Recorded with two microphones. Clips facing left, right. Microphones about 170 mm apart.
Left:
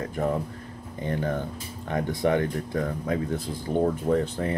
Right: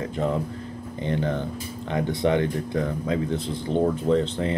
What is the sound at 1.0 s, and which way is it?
Speech, 25° right (ahead or behind).